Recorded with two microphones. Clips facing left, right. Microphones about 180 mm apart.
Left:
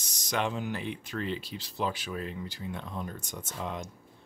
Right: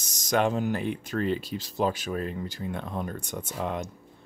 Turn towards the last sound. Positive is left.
turn(degrees=-60)  # may be behind; listen again after turning